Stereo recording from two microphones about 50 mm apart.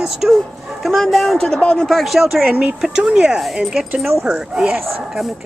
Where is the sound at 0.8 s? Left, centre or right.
Centre.